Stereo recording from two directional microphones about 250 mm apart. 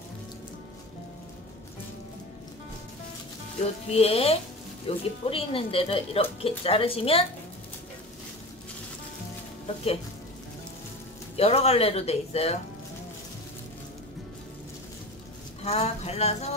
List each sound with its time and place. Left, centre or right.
3.9 s speech: left
11.3 s speech: left
15.6 s speech: left